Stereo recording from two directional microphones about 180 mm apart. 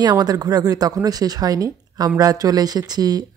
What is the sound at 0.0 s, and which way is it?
Speech, 20° right (ahead or behind).